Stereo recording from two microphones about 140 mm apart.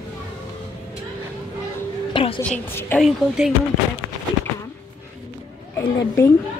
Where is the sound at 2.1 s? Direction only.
35° left (ahead or behind).